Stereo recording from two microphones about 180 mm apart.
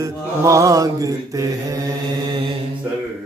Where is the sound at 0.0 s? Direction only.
20° right (ahead or behind).